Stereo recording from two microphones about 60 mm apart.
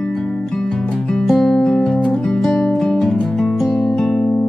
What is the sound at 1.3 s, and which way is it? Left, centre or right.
Music, centre.